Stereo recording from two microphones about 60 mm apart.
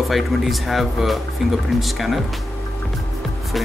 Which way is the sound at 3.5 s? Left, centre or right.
Centre.